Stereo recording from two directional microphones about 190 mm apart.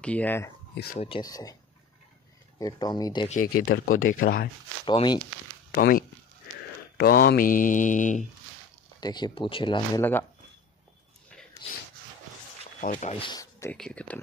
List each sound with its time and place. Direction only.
0.0 s speech: 10° left (ahead or behind)
0.9 s speech: 30° left (ahead or behind)
2.6 s speech: 20° left (ahead or behind)
3.3 s speech: 50° left (ahead or behind)
4.8 s speech: 25° left (ahead or behind)
5.8 s speech: 50° left (ahead or behind)
9.0 s speech: 20° left (ahead or behind)
11.6 s a sound: 30° left (ahead or behind)
12.8 s speech: 40° left (ahead or behind); by 13.7 s 15° left (ahead or behind)
13.7 s speech: 5° left (ahead or behind)